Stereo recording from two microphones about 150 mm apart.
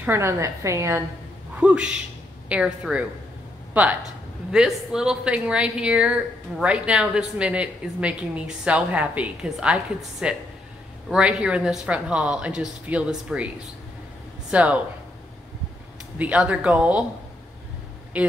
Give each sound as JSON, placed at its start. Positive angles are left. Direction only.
{"t": 0.0, "sound": "a woman's voice", "side_deg": -15}
{"t": 1.6, "sound": "a woman's voice", "side_deg": -5}
{"t": 4.5, "sound": "a woman's voice", "side_deg": -5}
{"t": 14.5, "sound": "speech", "side_deg": -10}
{"t": 16.2, "sound": "a woman's voice", "side_deg": -10}